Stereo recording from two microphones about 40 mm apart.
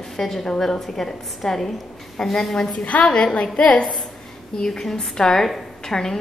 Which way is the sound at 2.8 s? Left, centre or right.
Left.